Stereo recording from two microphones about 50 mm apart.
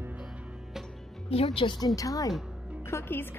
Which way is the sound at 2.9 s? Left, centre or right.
Left.